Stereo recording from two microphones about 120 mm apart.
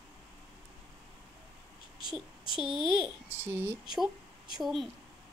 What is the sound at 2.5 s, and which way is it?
Speech, centre (ahead or behind).